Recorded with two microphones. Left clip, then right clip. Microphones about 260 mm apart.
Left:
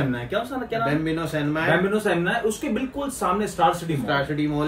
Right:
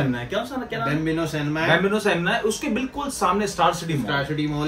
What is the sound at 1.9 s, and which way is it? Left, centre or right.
Speech, centre.